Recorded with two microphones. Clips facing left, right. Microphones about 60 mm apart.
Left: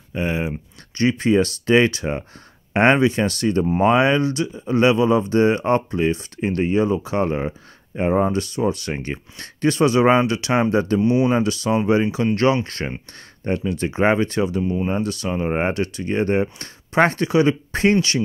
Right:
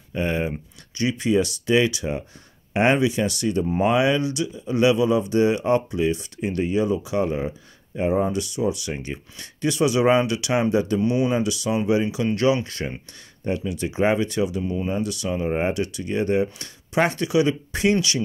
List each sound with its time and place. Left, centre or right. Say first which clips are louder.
0.1 s speech: left 1 dB; left
0.9 s speech: left 4 dB; left
11.0 s speech: left 4 dB; left
11.2 s speech: left 4 dB; left
14.6 s speech: left 4 dB; left
14.9 s speech: left 2 dB; left